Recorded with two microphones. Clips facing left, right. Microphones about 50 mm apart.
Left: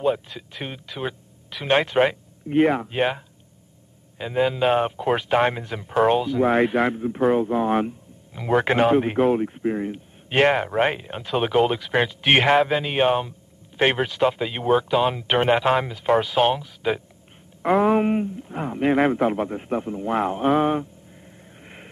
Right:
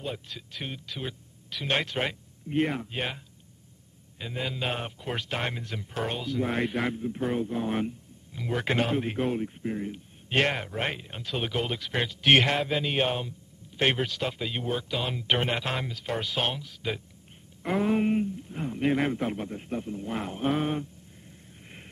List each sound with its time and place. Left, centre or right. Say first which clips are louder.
0.0 s speech: left 13 dB; left
4.4 s speech: left 13 dB; centre
9.6 s speech: left 8 dB; left
9.8 s speech: left 5 dB; centre
12.5 s speech: left 8 dB; centre
17.6 s speech: left 8 dB; centre
17.9 s speech: left 5 dB; left
20.4 s speech: left 7 dB; centre
21.5 s vehicle: left 6 dB; left